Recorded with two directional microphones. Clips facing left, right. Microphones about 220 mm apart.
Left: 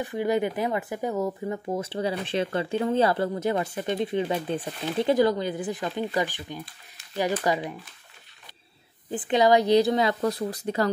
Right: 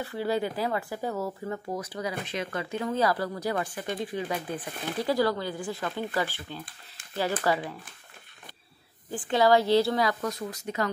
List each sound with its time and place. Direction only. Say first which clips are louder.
0.0 s speech: left 4 dB; 15° left (ahead or behind)
9.1 s speech: left 2 dB; 20° left (ahead or behind)